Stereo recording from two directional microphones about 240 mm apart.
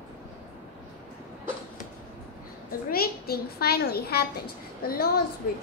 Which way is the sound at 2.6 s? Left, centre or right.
Left.